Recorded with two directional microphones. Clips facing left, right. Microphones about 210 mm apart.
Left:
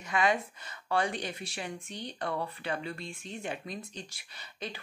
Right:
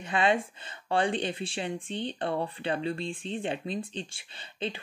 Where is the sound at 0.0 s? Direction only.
30° right (ahead or behind).